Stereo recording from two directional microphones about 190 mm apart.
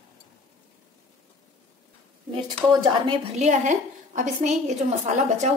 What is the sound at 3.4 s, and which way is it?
A woman's voice, 40° right (ahead or behind).